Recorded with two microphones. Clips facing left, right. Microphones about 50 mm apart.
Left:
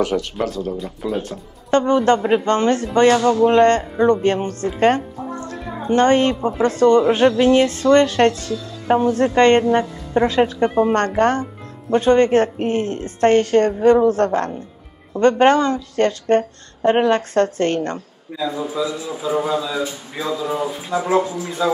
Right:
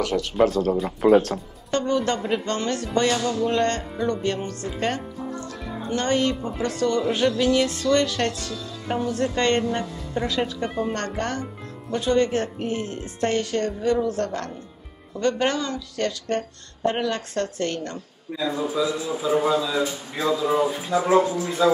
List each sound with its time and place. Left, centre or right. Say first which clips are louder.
0.1 s speech: left 3 dB; centre
0.5 s speech: right 3 dB; right
1.7 s speech: left 8 dB; left
18.4 s a man's voice: left 2 dB; centre
20.9 s a man's voice: left 1 dB; centre